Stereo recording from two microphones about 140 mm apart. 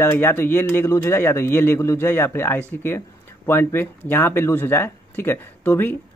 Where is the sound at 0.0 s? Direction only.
15° left (ahead or behind).